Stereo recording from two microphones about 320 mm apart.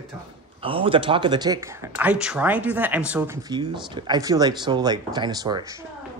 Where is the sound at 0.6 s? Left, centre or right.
Centre.